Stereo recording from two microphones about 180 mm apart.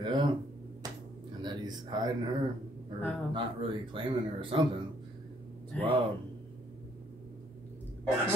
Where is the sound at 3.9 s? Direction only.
30° right (ahead or behind).